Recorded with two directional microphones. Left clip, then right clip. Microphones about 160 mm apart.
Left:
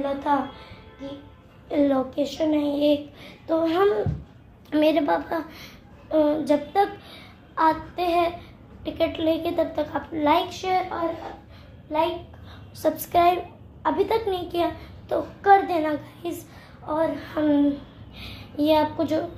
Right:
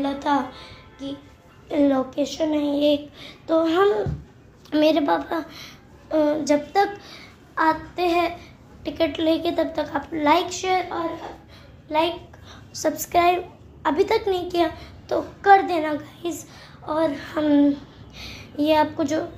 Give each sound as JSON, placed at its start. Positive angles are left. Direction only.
{"t": 0.0, "sound": "music", "side_deg": -55}
{"t": 1.7, "sound": "a child's voice", "side_deg": -20}
{"t": 12.8, "sound": "a child's voice", "side_deg": -25}
{"t": 13.8, "sound": "a child's voice", "side_deg": -40}
{"t": 16.8, "sound": "a woman's voice", "side_deg": -50}